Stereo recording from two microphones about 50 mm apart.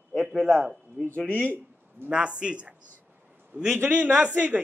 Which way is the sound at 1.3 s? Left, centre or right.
Left.